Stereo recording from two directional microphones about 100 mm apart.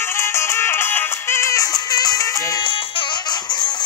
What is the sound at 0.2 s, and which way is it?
Music, 25° left (ahead or behind).